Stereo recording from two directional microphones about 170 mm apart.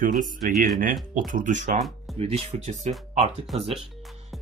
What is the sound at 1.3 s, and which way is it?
Speech, 50° right (ahead or behind).